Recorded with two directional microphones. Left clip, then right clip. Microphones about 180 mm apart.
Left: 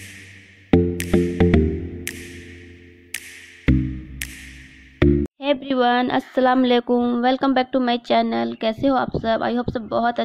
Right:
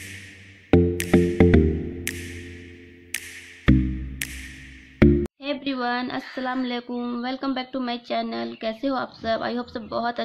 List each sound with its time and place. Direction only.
0.7 s music: centre (ahead or behind)
5.4 s a sound: 45° left (ahead or behind)
6.3 s speech: 50° left (ahead or behind)
7.0 s speech: 40° left (ahead or behind)